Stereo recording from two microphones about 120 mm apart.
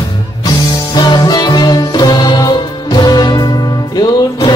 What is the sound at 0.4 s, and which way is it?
Music, 35° left (ahead or behind).